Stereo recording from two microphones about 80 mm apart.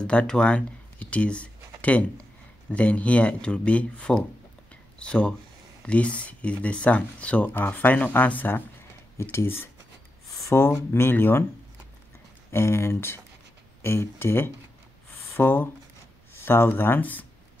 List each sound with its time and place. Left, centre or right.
0.0 s speech: centre
12.4 s speech: left